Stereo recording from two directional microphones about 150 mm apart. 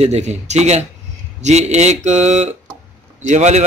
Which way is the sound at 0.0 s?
45° right (ahead or behind).